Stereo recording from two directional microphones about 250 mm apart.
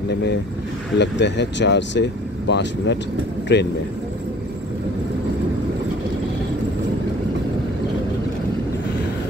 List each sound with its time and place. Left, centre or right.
0.9 s speech: left